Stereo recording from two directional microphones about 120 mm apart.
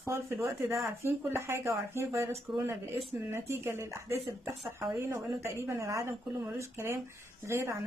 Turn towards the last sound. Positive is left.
turn(degrees=-25)  # may be behind; listen again after turning